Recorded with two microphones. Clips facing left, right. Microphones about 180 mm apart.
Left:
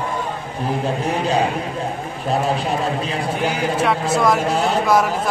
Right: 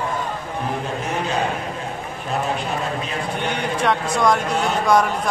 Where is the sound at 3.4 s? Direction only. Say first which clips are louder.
Left 3 dB; 5° left (ahead or behind).